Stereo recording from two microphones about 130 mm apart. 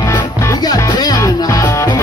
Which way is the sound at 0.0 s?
25° left (ahead or behind).